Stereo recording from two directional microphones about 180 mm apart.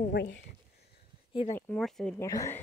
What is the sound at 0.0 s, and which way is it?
Speech, 70° left (ahead or behind).